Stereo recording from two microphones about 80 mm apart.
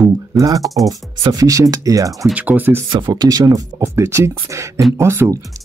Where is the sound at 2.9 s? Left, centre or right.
Right.